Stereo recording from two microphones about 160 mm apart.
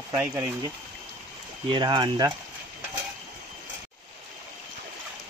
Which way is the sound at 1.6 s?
30° right (ahead or behind).